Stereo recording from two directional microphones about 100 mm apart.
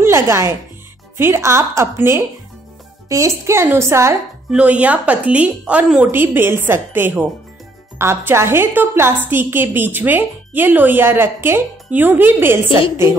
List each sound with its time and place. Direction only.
0.0 s a woman's voice: 25° right (ahead or behind)
4.5 s a woman's voice: 10° right (ahead or behind)
12.6 s a woman's voice: 65° left (ahead or behind)